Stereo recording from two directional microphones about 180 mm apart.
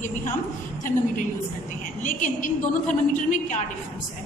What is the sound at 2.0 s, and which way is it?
Speech, 45° left (ahead or behind).